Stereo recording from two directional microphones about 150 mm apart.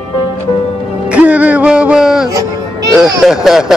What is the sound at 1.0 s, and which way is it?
Music, 10° right (ahead or behind).